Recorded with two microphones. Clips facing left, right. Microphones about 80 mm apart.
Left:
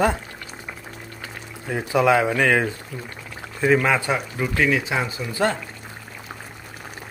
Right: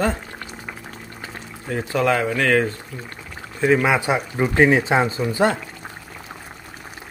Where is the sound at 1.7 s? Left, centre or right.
Centre.